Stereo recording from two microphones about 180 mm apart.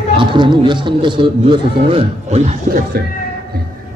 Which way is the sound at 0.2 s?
25° right (ahead or behind).